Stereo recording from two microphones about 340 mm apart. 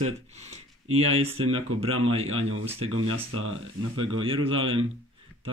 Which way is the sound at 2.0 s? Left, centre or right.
Centre.